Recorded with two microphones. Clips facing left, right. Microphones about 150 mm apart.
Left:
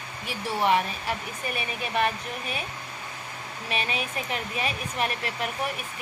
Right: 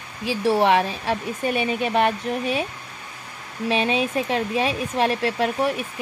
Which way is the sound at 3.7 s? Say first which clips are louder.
Right 9 dB; 90° right.